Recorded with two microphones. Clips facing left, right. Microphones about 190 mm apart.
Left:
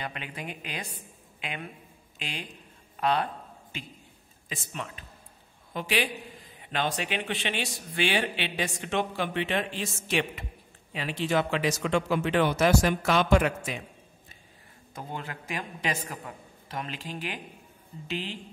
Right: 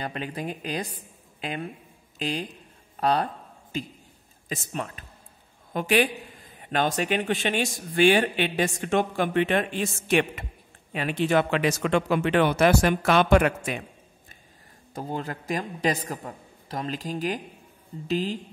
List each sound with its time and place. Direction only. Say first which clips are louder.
0.0 s a man's voice: right 6 dB; 35° right (ahead or behind); by 13.8 s 60° right (ahead or behind)
15.0 s a man's voice: right 6 dB; 35° right (ahead or behind)